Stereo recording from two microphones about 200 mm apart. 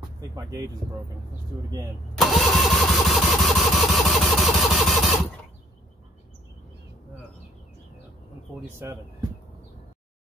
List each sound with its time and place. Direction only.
0.4 s speech: 15° right (ahead or behind)
2.1 s engine starting: centre (ahead or behind)